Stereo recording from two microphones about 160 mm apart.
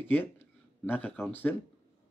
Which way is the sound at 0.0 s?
10° left (ahead or behind).